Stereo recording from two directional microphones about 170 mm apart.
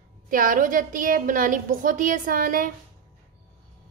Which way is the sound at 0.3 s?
55° right (ahead or behind).